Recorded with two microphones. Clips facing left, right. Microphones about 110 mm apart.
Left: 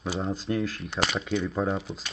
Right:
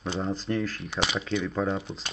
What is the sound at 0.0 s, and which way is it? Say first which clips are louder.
Speech: even; 5° left (ahead or behind).